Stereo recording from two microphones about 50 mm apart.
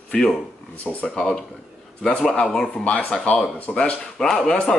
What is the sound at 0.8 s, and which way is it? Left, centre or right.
Speech, centre.